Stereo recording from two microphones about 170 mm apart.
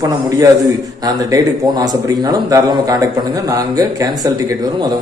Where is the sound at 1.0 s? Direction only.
20° right (ahead or behind).